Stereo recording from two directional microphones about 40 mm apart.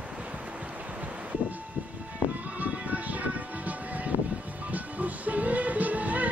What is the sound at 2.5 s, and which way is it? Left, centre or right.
Music, right.